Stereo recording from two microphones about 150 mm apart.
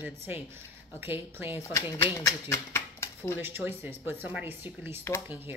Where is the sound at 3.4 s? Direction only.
15° right (ahead or behind).